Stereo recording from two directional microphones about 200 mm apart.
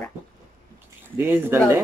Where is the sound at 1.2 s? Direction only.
10° right (ahead or behind).